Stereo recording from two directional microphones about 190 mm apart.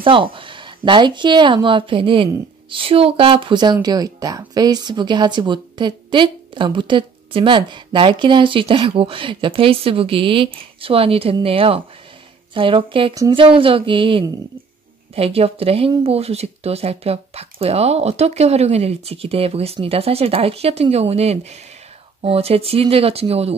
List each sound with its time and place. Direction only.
0.0 s speech: 25° right (ahead or behind)